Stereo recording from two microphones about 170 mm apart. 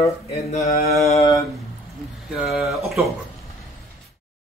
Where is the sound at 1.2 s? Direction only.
20° left (ahead or behind).